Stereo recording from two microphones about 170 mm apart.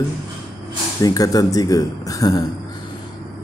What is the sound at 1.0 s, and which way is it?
A man's voice, 20° left (ahead or behind).